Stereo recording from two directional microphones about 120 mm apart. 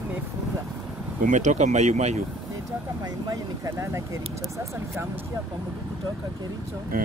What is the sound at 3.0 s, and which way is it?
Speech, 30° right (ahead or behind).